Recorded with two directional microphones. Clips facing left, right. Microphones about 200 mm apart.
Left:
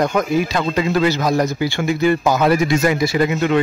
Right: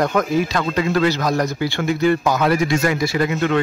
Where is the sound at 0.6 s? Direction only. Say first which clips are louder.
Left 1 dB; 15° left (ahead or behind).